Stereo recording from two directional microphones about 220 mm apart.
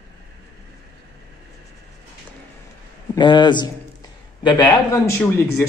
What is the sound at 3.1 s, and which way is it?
Speech, 20° left (ahead or behind).